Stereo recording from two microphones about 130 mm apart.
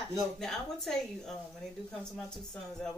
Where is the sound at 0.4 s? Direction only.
5° left (ahead or behind).